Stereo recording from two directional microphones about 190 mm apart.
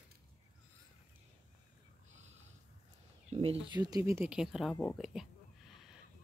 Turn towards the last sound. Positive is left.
turn(degrees=0)  # may be behind; listen again after turning